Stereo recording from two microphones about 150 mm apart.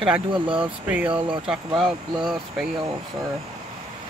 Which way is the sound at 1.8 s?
5° right (ahead or behind).